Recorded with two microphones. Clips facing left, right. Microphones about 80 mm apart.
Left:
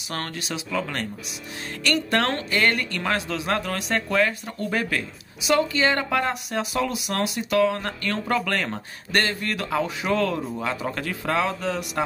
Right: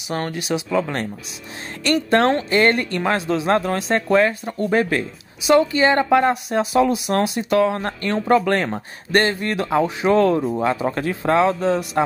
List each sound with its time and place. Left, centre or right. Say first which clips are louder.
0.1 s speech: right 7 dB; centre
0.7 s speech: right 3 dB; right